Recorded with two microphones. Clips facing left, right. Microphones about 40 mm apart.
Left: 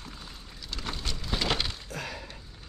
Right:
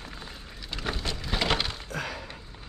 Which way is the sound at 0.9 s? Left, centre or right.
Centre.